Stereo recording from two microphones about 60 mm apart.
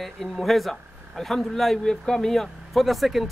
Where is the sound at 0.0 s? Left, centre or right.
Centre.